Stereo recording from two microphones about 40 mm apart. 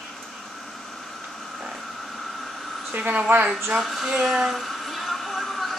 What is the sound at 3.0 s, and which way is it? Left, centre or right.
Speech, right.